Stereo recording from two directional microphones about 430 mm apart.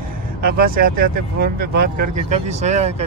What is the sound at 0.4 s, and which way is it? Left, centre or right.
Speech, centre.